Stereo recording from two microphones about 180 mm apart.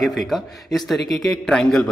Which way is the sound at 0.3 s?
Centre (ahead or behind).